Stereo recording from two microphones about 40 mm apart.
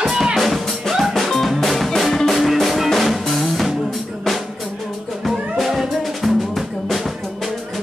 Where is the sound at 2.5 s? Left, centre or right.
Centre.